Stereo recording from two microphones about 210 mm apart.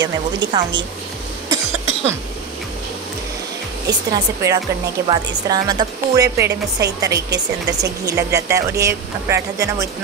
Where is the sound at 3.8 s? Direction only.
15° right (ahead or behind).